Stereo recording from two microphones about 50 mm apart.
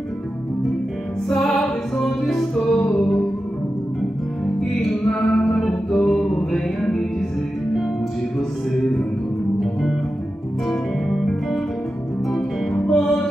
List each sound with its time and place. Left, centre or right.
1.3 s music: centre
5.3 s music: centre
10.7 s music: centre
12.7 s music: centre